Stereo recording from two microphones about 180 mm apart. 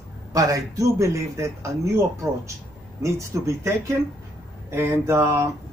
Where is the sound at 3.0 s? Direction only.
15° right (ahead or behind).